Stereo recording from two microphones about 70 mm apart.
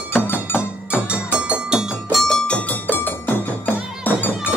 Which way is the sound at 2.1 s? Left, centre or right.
Centre.